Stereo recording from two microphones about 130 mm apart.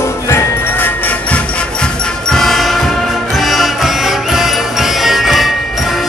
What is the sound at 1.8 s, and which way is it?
Music, 5° left (ahead or behind).